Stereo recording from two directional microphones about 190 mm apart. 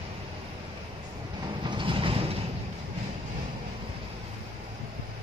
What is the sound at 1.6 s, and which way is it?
Vehicle, 25° right (ahead or behind).